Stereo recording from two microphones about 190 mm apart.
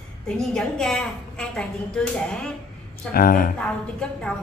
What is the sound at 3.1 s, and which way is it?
Speech, 50° left (ahead or behind).